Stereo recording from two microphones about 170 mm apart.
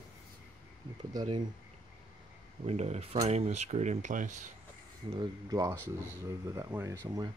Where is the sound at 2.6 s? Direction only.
40° right (ahead or behind).